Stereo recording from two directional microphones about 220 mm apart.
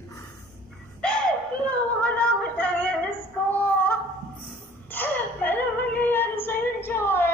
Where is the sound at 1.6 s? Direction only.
5° left (ahead or behind).